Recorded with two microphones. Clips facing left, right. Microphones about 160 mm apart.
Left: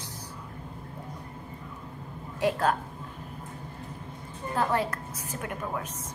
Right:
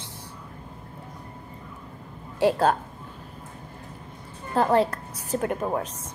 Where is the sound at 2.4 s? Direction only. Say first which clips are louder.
Right 5 dB; 30° right (ahead or behind).